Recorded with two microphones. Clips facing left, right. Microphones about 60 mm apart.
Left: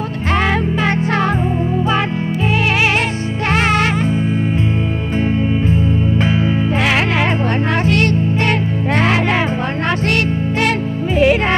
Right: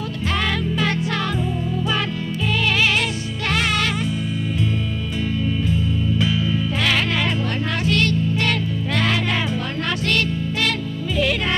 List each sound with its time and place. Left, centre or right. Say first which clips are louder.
0.8 s music: left 6 dB; left
3.5 s music: left 6 dB; left
6.8 s music: left 4 dB; left
11.1 s music: left 8 dB; left